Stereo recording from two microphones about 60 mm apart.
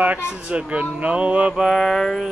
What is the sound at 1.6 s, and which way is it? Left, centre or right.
Mantra, centre.